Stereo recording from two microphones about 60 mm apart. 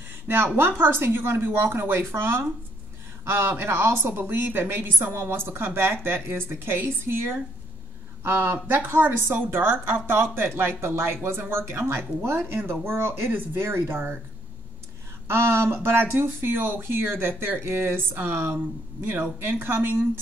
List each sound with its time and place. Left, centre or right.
0.7 s speech: right
15.2 s speech: right